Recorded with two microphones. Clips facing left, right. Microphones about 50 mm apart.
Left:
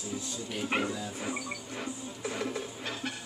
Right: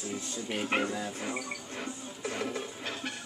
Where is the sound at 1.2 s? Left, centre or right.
Centre.